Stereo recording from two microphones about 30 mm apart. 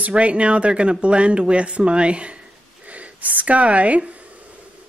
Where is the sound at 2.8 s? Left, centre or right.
Right.